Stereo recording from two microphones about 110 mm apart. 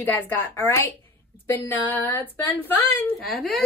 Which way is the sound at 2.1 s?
15° left (ahead or behind).